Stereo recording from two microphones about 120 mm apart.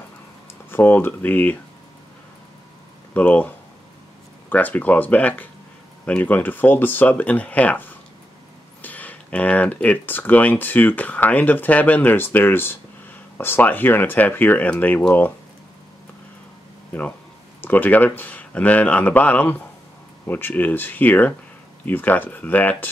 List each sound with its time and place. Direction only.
0.7 s speech: 20° left (ahead or behind)
3.2 s speech: 15° left (ahead or behind)
17.6 s speech: 15° left (ahead or behind)